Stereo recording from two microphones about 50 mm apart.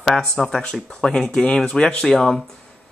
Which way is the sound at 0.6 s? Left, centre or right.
Left.